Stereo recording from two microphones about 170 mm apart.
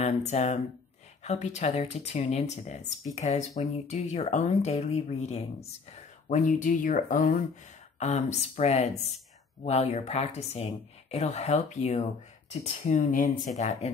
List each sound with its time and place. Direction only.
0.0 s speech: 40° left (ahead or behind)
13.6 s speech: 40° left (ahead or behind)